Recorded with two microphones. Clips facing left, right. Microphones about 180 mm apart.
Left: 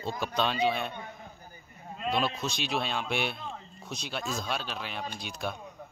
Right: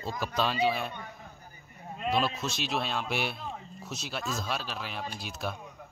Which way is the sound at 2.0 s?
5° right (ahead or behind).